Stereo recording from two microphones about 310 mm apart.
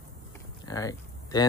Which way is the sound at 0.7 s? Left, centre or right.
Centre.